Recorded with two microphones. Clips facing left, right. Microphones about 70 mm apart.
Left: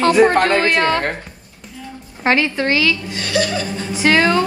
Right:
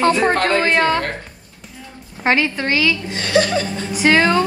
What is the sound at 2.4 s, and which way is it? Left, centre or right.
Speech, left.